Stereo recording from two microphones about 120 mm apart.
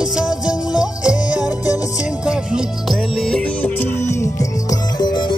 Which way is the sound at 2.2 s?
5° right (ahead or behind).